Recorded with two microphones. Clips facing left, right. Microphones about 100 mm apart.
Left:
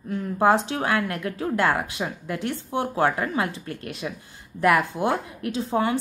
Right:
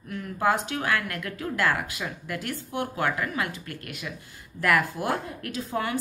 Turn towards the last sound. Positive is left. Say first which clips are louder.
# left 6 dB
turn(degrees=25)  # may be behind; listen again after turning